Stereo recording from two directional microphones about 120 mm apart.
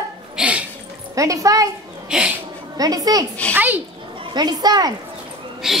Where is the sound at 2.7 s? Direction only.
30° right (ahead or behind).